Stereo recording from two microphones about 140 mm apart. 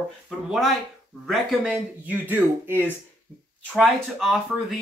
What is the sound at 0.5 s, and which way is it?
Speech, centre (ahead or behind).